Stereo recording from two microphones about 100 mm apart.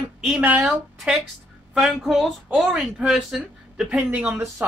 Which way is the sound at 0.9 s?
Centre (ahead or behind).